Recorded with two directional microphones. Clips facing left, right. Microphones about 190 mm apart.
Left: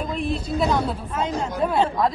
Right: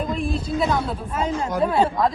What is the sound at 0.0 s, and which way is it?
A woman's voice, centre (ahead or behind).